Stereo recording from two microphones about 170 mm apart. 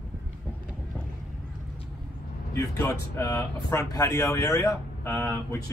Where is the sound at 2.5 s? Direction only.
15° left (ahead or behind).